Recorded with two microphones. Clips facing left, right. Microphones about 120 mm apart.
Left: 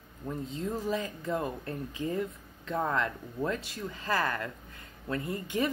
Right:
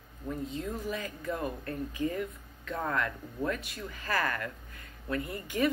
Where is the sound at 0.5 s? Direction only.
30° left (ahead or behind).